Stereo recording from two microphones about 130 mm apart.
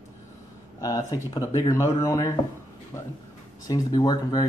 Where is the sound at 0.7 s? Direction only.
25° left (ahead or behind).